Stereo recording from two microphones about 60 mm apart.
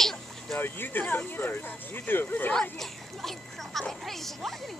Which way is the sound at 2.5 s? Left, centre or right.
Centre.